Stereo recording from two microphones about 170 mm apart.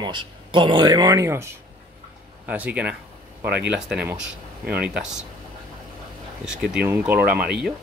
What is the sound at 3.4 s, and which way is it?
Speech, 70° right (ahead or behind).